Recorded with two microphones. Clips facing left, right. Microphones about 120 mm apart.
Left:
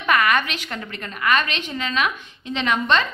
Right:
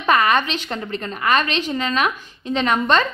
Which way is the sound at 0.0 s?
30° right (ahead or behind).